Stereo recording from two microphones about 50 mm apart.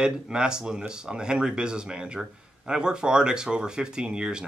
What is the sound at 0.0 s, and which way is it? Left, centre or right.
Speech, centre.